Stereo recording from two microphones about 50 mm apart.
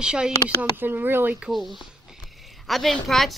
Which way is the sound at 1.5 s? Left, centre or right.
Centre.